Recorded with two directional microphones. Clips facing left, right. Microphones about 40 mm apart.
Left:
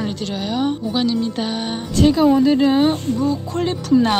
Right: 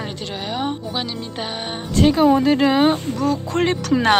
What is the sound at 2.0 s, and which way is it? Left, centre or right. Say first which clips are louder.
Speech: left 1 dB; right.